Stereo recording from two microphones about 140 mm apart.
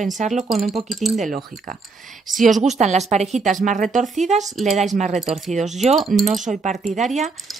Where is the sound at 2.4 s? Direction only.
60° right (ahead or behind).